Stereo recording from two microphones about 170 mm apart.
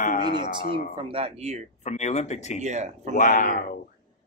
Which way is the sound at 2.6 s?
45° right (ahead or behind).